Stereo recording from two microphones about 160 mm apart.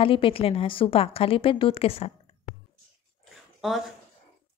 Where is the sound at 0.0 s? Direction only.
35° left (ahead or behind).